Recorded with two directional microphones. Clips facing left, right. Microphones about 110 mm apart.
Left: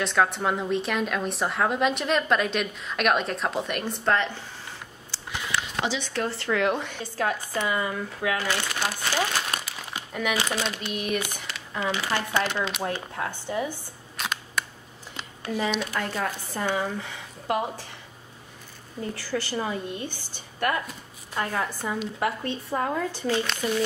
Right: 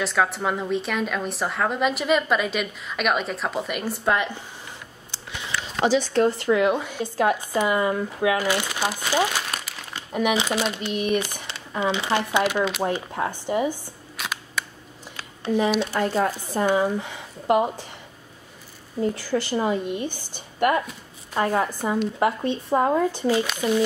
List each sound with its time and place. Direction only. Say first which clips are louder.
0.0 s a woman's voice: even; centre (ahead or behind)
5.1 s camera: even; 20° right (ahead or behind)
5.9 s speech: right 14 dB; 40° right (ahead or behind)
6.1 s a woman's voice: right 7 dB; 15° right (ahead or behind)
9.5 s crumpling: even; centre (ahead or behind)
10.1 s a woman's voice: right 5 dB; 20° right (ahead or behind)
12.8 s a woman's voice: right 5 dB; 20° right (ahead or behind)
14.1 s camera: even; centre (ahead or behind)
15.4 s a woman's voice: right 6 dB; 25° right (ahead or behind)
16.3 s a woman's voice: right 6 dB; 15° right (ahead or behind)
18.9 s a woman's voice: right 6 dB; 15° right (ahead or behind)